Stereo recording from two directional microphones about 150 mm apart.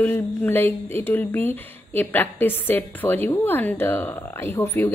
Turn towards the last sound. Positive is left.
turn(degrees=15)  # may be behind; listen again after turning